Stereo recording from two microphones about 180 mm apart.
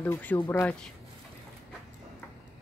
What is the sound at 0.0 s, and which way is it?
Speech, 10° left (ahead or behind).